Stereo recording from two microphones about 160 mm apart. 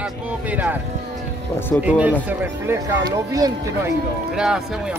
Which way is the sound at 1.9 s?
10° right (ahead or behind).